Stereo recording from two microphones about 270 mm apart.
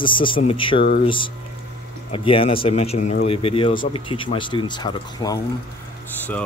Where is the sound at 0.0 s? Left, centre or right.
Centre.